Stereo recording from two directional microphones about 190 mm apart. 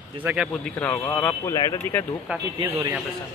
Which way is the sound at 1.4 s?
20° left (ahead or behind).